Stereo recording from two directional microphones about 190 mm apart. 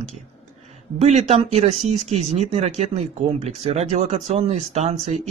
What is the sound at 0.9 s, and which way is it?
A man's voice, 35° right (ahead or behind).